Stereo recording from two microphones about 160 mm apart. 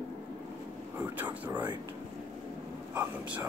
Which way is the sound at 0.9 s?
10° right (ahead or behind).